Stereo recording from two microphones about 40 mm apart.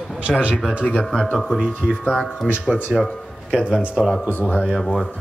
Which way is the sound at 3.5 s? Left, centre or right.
Right.